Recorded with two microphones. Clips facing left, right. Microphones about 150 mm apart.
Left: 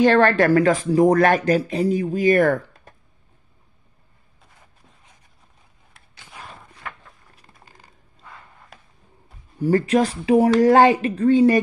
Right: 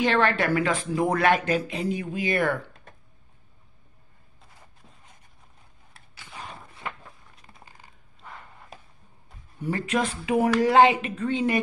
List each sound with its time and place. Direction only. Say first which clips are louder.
0.0 s speech: left 7 dB; 45° left (ahead or behind)
9.6 s speech: left 8 dB; 35° left (ahead or behind)